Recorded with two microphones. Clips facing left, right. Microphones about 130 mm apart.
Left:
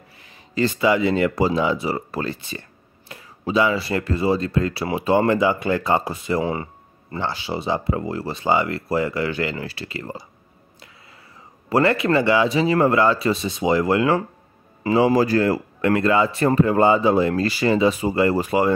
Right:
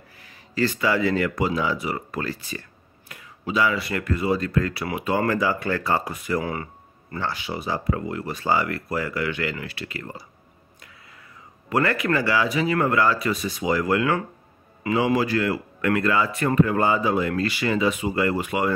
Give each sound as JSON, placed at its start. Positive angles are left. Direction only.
{"t": 0.2, "sound": "speech", "side_deg": 20}
{"t": 11.7, "sound": "speech", "side_deg": 25}